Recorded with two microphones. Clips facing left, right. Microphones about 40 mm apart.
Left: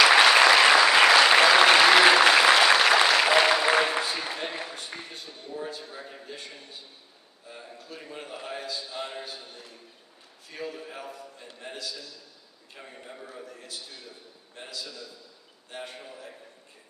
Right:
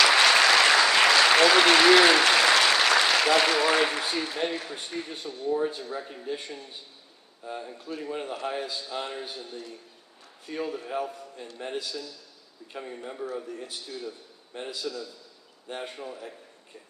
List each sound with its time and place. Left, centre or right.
0.0 s applause: centre
4.8 s speech: centre
5.5 s a man's voice: centre
5.8 s speech: centre
7.5 s a man's voice: centre
10.4 s a man's voice: centre
12.7 s speech: centre
14.5 s a man's voice: centre
14.8 s speech: centre